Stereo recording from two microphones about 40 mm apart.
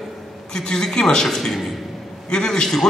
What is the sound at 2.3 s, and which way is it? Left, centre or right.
Speech, centre.